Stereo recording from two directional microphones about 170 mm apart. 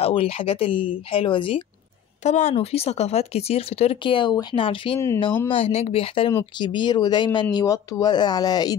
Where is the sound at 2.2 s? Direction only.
40° left (ahead or behind).